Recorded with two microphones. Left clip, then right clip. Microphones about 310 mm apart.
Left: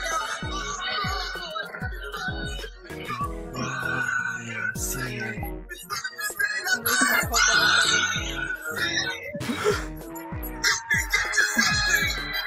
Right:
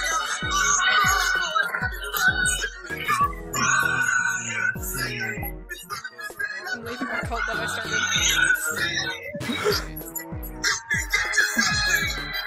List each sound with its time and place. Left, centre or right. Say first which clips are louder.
0.0 s music: right 3 dB; centre
0.5 s music: right 9 dB; right
3.8 s music: right 4 dB; centre
5.9 s music: left 4 dB; centre
7.0 s music: left 6 dB; left
8.2 s music: right 10 dB; right
8.7 s music: even; centre